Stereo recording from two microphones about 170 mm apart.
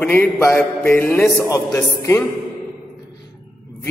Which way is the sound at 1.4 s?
20° left (ahead or behind).